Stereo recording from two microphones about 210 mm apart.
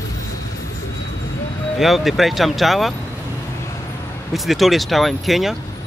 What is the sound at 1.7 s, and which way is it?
Speech, centre (ahead or behind).